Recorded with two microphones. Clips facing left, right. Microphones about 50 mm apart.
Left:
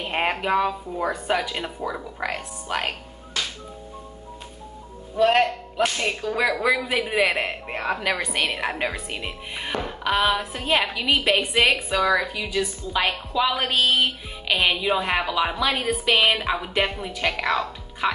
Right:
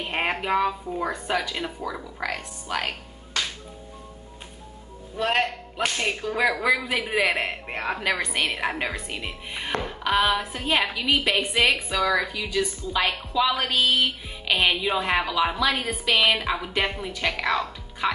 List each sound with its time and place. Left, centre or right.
0.0 s speech: centre
1.2 s speech: centre
5.1 s a woman's voice: centre
13.7 s speech: centre
14.5 s a woman's voice: centre
15.7 s a woman's voice: left
16.1 s a woman's voice: centre